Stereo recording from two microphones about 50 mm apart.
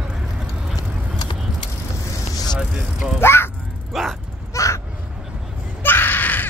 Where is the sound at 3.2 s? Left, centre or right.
Left.